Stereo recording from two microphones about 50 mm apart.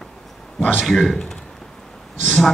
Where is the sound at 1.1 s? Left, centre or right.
Centre.